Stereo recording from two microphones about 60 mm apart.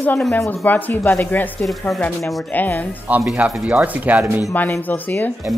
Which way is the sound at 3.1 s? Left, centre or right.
Right.